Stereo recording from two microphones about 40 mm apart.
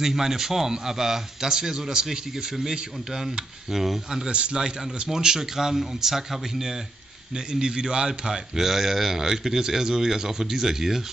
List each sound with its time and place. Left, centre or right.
0.0 s a man's voice: centre
4.3 s a man's voice: right; by 6.8 s centre
7.3 s a man's voice: centre